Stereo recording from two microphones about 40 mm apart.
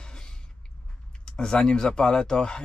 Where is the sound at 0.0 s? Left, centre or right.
Centre.